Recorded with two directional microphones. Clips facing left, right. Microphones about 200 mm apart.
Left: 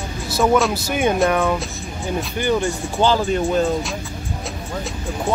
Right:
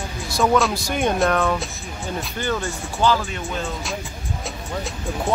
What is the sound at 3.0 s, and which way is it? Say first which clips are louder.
Speech: left 3 dB; 30° left (ahead or behind).